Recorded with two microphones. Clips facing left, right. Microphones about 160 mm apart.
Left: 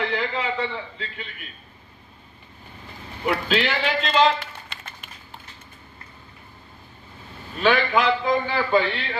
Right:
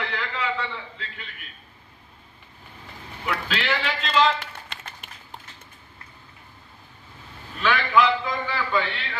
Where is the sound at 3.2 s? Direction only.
30° left (ahead or behind).